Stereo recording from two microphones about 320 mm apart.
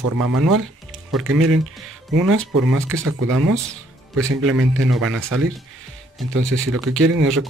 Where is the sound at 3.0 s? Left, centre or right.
Right.